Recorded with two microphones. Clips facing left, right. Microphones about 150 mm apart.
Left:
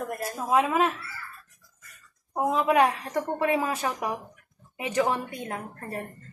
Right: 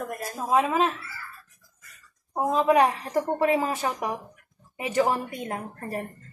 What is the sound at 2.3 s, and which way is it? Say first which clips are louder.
Speech: right 1 dB; 15° left (ahead or behind).